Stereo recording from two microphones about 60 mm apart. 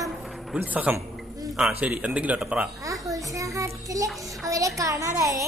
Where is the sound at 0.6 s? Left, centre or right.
Right.